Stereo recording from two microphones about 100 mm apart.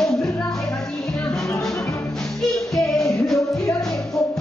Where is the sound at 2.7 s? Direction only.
Centre (ahead or behind).